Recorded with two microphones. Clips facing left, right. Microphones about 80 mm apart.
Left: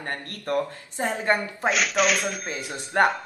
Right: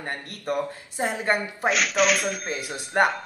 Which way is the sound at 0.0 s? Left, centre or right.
Centre.